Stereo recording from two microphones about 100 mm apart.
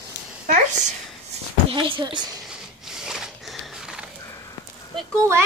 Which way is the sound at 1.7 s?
55° right (ahead or behind).